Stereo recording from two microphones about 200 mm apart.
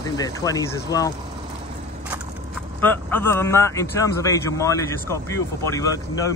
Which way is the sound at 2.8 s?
10° left (ahead or behind).